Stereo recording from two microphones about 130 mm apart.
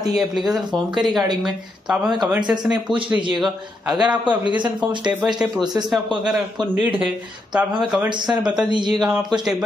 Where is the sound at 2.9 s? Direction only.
40° right (ahead or behind).